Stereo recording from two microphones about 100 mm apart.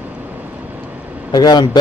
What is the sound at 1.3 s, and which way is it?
Speech, 45° left (ahead or behind).